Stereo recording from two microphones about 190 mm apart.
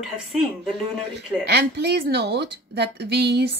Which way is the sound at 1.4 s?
60° right (ahead or behind).